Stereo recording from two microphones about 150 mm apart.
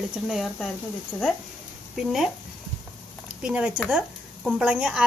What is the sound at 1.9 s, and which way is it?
Speech, centre (ahead or behind).